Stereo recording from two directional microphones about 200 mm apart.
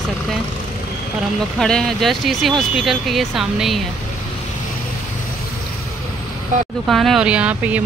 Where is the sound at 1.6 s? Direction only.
Centre (ahead or behind).